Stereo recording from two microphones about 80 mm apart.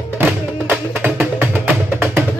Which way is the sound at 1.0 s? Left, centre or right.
Right.